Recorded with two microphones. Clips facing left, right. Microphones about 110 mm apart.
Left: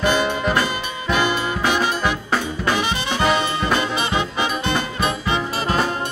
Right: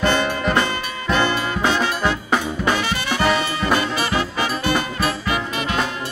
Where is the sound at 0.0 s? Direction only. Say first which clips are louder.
Even; 15° left (ahead or behind).